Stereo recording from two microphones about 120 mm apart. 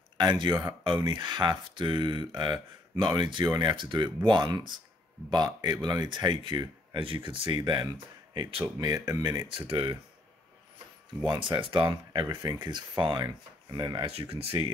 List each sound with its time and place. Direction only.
0.2 s speech: 35° right (ahead or behind)
8.7 s speech: 30° right (ahead or behind); by 9.9 s 45° right (ahead or behind)
11.2 s speech: 40° right (ahead or behind)
14.3 s speech: 55° right (ahead or behind)